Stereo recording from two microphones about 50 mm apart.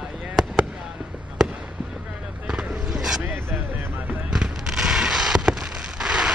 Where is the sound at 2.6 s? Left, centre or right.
Right.